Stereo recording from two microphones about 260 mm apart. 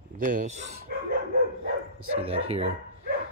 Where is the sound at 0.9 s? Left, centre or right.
Right.